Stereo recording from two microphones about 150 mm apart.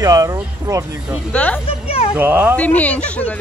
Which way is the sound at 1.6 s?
40° left (ahead or behind).